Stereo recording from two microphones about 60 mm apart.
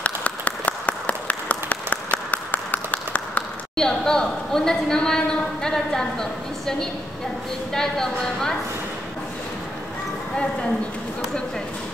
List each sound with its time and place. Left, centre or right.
0.0 s applause: left
3.7 s a woman's voice: centre
10.3 s a woman's voice: centre